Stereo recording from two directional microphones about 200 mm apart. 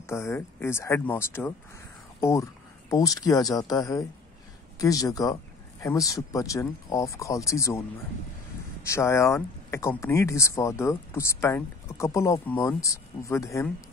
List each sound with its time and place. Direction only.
0.0 s speech: 15° left (ahead or behind)
8.8 s speech: 15° left (ahead or behind)